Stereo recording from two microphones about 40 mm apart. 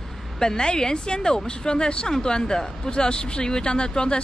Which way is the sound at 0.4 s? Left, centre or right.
Centre.